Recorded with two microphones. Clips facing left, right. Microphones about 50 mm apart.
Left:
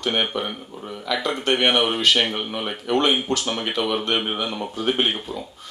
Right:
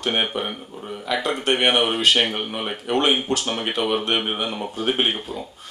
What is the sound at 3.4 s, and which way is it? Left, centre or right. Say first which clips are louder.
Speech: even; centre.